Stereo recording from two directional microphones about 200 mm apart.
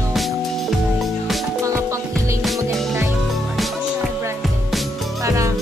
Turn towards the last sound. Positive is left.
turn(degrees=-15)  # may be behind; listen again after turning